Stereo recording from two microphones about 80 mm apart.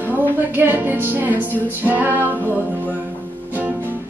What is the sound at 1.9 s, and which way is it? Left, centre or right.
Music, right.